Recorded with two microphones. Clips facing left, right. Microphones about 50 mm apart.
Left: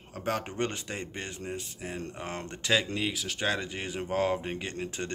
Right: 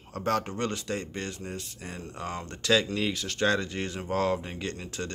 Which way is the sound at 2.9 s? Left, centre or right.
Centre.